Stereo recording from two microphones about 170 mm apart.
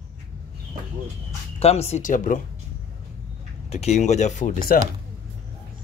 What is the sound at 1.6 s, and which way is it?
Speech, 40° left (ahead or behind).